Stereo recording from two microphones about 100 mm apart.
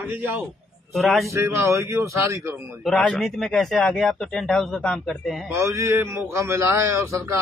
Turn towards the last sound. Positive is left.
turn(degrees=-25)  # may be behind; listen again after turning